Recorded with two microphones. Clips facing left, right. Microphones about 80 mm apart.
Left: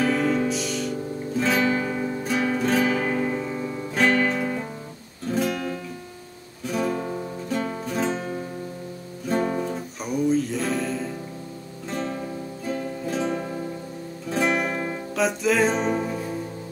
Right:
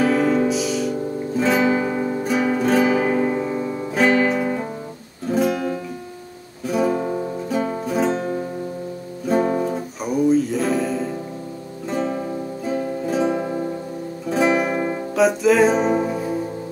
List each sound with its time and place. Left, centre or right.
0.0 s music: centre
13.4 s music: right
14.3 s music: centre